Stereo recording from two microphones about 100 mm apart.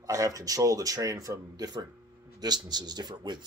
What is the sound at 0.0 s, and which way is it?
A man's voice, 35° right (ahead or behind).